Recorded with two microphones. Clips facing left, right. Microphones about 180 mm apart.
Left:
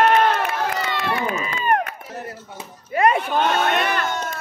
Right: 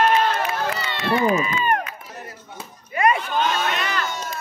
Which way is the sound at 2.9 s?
55° left (ahead or behind).